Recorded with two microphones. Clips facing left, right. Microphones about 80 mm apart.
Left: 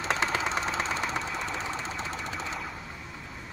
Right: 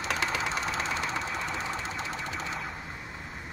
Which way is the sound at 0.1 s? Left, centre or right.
Left.